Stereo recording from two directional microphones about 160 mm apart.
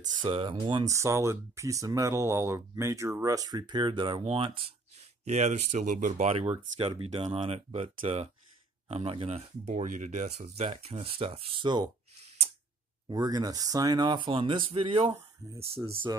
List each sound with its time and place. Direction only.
0.2 s speech: 35° right (ahead or behind)
0.8 s speech: 20° right (ahead or behind); by 4.6 s 35° right (ahead or behind)
5.2 s speech: 45° right (ahead or behind); by 11.9 s 25° right (ahead or behind)
13.1 s speech: 25° right (ahead or behind)